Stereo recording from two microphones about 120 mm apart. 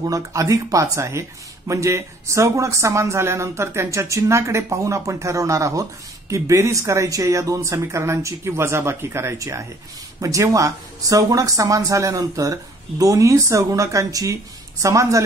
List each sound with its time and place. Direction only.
0.0 s speech: 30° right (ahead or behind)